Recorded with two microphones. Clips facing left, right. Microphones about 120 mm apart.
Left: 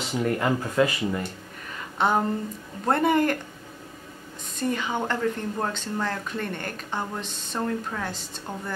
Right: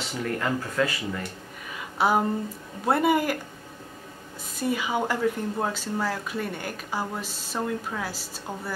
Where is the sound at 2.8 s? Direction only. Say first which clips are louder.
Left 1 dB; 5° right (ahead or behind).